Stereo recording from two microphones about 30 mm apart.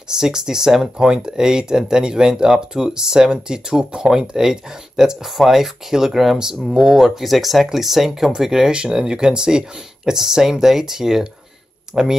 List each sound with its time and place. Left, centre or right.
0.1 s speech: right
7.2 s speech: centre